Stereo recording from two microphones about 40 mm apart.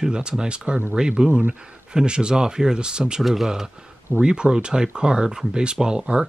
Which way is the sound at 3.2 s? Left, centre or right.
Centre.